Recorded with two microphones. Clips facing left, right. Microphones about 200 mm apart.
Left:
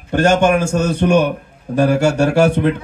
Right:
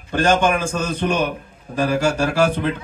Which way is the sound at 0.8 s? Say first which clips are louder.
Left 7 dB; 70° left (ahead or behind).